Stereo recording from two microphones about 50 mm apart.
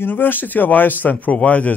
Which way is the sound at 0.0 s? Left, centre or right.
Left.